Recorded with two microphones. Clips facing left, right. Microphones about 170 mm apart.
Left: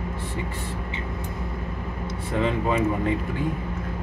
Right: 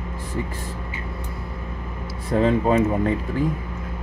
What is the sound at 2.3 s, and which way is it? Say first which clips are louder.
Speech: right 5 dB; 40° right (ahead or behind).